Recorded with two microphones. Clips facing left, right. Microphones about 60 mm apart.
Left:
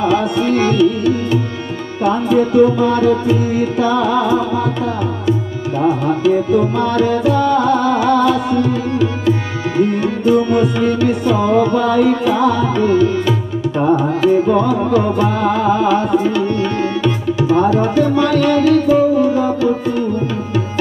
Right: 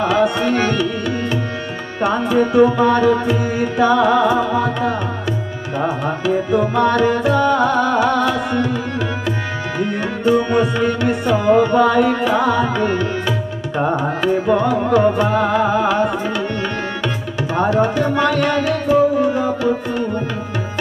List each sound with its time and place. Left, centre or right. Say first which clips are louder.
0.2 s tabla: left 1 dB; right
2.0 s tabla: left 2 dB; right
6.9 s music: left 1 dB; right
10.5 s music: left 2 dB; right
14.2 s music: left 2 dB; right
17.4 s tabla: left 2 dB; right